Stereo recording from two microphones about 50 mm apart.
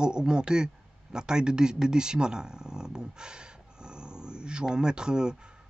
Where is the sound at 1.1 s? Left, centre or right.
Centre.